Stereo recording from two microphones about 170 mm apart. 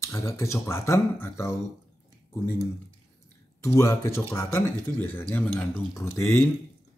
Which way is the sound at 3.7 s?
15° left (ahead or behind).